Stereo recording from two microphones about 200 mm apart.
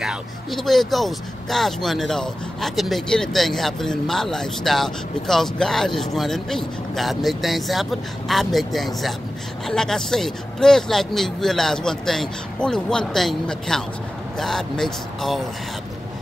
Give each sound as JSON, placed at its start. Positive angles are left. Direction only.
{"t": 0.0, "sound": "speech", "side_deg": 0}